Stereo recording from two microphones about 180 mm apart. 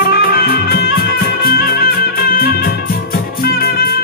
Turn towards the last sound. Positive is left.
turn(degrees=55)  # may be behind; listen again after turning